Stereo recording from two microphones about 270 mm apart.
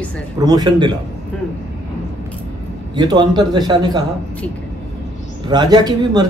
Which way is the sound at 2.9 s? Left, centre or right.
Centre.